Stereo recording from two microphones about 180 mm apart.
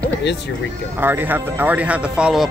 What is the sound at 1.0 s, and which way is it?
Speech, 10° right (ahead or behind).